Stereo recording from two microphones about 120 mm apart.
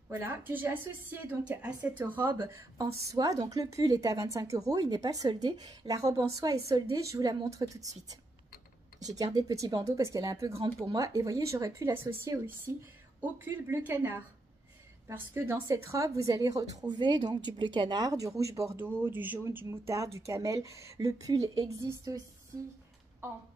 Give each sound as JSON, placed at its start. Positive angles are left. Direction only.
{"t": 0.1, "sound": "a woman's voice", "side_deg": -15}
{"t": 9.2, "sound": "a woman's voice", "side_deg": -30}